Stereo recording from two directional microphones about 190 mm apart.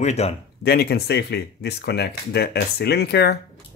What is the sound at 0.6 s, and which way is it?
Speech, 55° left (ahead or behind).